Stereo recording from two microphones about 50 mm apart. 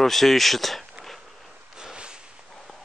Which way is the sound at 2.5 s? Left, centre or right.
Centre.